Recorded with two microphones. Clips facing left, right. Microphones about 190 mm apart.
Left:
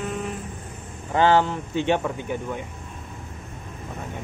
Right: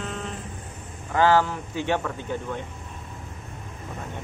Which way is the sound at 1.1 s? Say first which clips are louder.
Left 1 dB; 20° left (ahead or behind).